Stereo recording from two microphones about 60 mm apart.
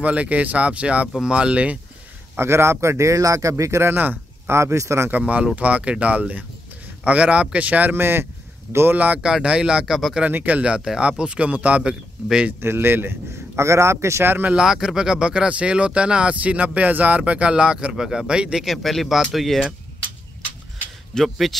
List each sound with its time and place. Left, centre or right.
0.0 s speech: right
2.3 s speech: right
3.8 s speech: right
4.5 s a man's voice: right
5.6 s speech: right
7.9 s speech: right
8.9 s speech: right
9.2 s speech: centre
10.3 s speech: right
10.6 s speech: centre
12.5 s a man's voice: right
14.5 s speech: centre
18.8 s speech: centre
21.1 s speech: centre